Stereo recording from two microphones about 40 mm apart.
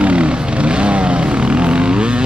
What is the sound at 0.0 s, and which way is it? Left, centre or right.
Vehicle, right.